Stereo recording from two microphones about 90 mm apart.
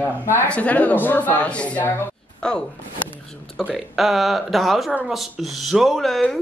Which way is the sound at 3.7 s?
Centre (ahead or behind).